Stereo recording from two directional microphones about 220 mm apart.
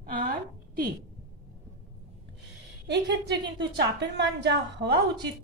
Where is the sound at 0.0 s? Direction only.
40° right (ahead or behind).